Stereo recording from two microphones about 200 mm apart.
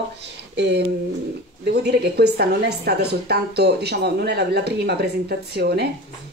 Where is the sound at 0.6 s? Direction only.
60° right (ahead or behind).